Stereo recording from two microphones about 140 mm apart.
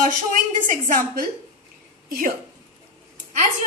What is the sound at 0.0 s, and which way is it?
A woman's voice, 70° right (ahead or behind).